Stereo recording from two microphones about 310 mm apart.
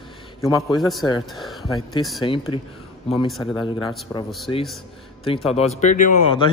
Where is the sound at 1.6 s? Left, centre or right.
Centre.